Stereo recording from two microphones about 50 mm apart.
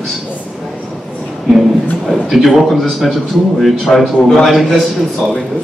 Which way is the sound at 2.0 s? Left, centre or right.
Centre.